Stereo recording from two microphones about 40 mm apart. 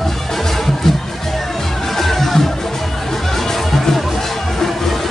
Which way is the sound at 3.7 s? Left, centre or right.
Centre.